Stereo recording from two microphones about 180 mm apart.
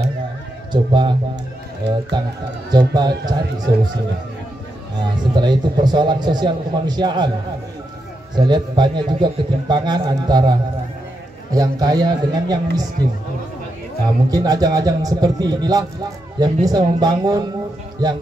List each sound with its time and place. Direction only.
0.7 s a man's voice: 25° right (ahead or behind)
2.1 s a man's voice: 25° right (ahead or behind)
5.3 s a man's voice: 25° right (ahead or behind)
8.4 s a man's voice: 25° right (ahead or behind)
11.5 s a man's voice: 20° right (ahead or behind)
14.0 s a man's voice: 20° right (ahead or behind)